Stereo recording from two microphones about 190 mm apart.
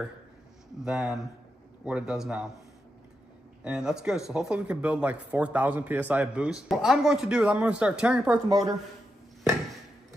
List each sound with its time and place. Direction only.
0.8 s speech: 5° right (ahead or behind)
3.6 s speech: 5° right (ahead or behind)
8.5 s a woman's voice: 20° right (ahead or behind)